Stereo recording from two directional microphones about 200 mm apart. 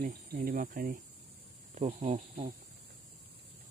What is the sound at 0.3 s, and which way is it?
Speech, 45° right (ahead or behind).